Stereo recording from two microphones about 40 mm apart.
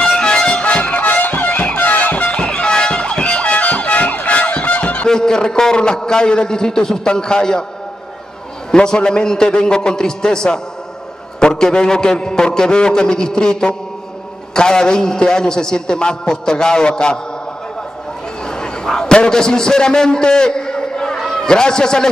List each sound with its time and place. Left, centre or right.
0.0 s music: left
1.8 s emergency vehicle: left
5.0 s a man's voice: centre
8.7 s a man's voice: centre
18.4 s a sound: centre